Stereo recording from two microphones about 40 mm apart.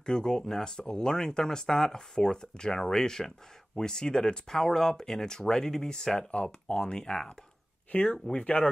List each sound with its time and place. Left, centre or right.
0.0 s speech: centre
6.3 s speech: left
7.9 s speech: left